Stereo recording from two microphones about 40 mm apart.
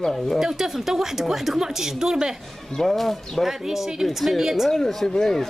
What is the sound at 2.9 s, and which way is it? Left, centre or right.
Speech, centre.